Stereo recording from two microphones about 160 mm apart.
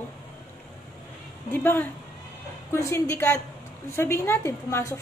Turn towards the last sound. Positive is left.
turn(degrees=20)  # may be behind; listen again after turning